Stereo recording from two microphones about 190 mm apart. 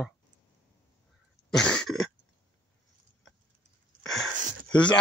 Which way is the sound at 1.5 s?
5° left (ahead or behind).